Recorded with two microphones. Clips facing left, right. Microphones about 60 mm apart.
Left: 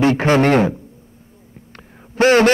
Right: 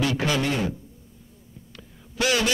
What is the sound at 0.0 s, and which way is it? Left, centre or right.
Speech, left.